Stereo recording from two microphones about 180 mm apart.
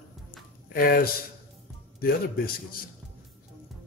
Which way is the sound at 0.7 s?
55° left (ahead or behind).